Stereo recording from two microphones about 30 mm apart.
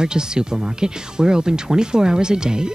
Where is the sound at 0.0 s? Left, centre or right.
Right.